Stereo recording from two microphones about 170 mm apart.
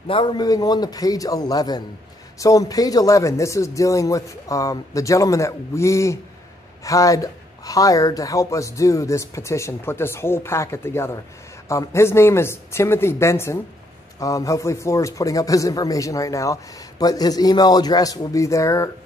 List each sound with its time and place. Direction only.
0.1 s a man's voice: 30° left (ahead or behind)